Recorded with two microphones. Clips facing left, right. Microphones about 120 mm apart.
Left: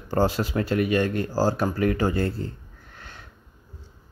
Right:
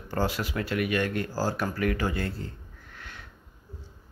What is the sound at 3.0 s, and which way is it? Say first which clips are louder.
Sniff: left 1 dB; 35° left (ahead or behind).